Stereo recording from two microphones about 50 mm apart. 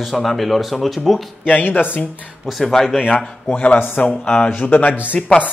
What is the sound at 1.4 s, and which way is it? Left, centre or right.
Speech, left.